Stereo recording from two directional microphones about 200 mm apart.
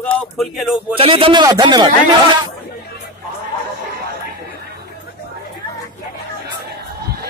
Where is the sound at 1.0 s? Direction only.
25° right (ahead or behind).